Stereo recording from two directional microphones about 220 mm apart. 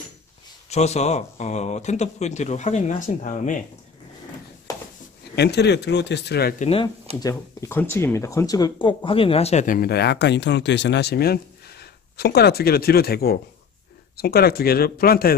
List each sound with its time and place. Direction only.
0.7 s speech: 30° left (ahead or behind)
4.7 s a sound: 15° left (ahead or behind)
5.3 s speech: 50° left (ahead or behind)
6.6 s speech: 25° left (ahead or behind)
7.2 s speech: 15° left (ahead or behind); by 15.3 s 45° left (ahead or behind)